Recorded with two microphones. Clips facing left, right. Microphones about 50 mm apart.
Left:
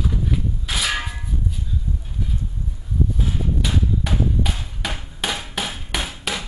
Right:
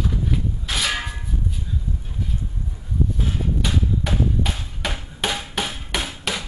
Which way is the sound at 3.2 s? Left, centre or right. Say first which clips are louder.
Even; centre.